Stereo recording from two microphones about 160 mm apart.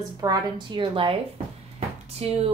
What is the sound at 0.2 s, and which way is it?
Speech, 25° right (ahead or behind).